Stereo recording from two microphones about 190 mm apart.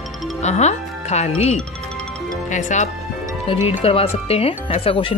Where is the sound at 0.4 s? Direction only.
35° left (ahead or behind).